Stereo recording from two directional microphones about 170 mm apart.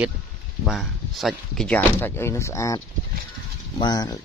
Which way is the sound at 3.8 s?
25° left (ahead or behind).